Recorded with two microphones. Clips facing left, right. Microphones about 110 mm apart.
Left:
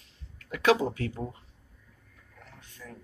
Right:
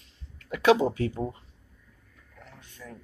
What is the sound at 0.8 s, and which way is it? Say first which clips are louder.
Speech: right 4 dB; 20° right (ahead or behind).